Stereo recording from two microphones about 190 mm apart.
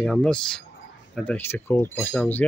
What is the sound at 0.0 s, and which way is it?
Speech, 5° left (ahead or behind).